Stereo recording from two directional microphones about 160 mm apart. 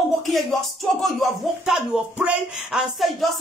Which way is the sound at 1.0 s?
Centre (ahead or behind).